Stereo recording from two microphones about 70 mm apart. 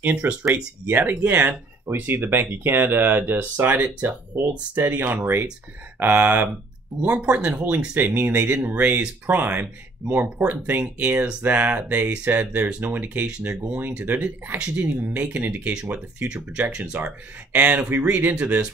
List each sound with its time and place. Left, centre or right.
0.0 s speech: right
0.3 s speech: centre
0.8 s speech: right
10.4 s speech: right